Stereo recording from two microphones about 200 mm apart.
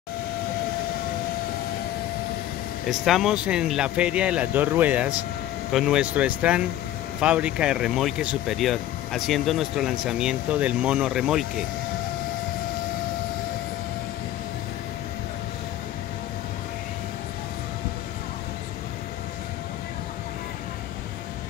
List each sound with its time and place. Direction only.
2.9 s speech: centre (ahead or behind)